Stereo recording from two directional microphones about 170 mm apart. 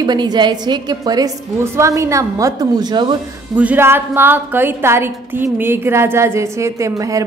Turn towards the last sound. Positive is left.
turn(degrees=-20)  # may be behind; listen again after turning